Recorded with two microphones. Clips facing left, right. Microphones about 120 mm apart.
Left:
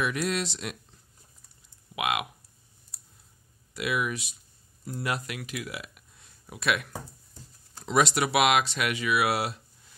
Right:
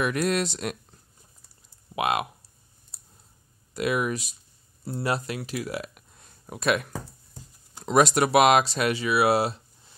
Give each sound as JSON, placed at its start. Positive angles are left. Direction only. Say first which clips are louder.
{"t": 0.0, "sound": "speech", "louder": "right 4 dB", "side_deg": -50}
{"t": 2.0, "sound": "speech", "louder": "right 4 dB", "side_deg": -35}
{"t": 2.9, "sound": "clicking", "louder": "right 2 dB", "side_deg": -25}
{"t": 3.7, "sound": "speech", "louder": "right 4 dB", "side_deg": -40}